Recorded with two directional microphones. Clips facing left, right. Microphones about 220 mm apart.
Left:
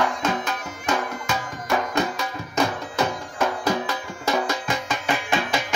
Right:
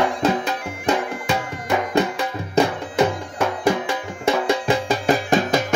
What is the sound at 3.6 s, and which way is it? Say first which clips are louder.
Music: right 4 dB; 30° right (ahead or behind).